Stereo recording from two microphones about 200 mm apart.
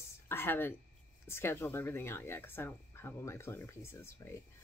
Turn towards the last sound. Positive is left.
turn(degrees=15)  # may be behind; listen again after turning